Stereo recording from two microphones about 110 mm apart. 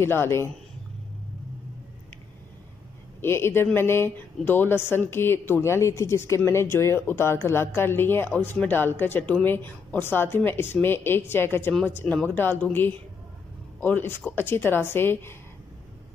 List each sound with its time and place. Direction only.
0.0 s speech: 25° left (ahead or behind)
3.2 s speech: 20° left (ahead or behind)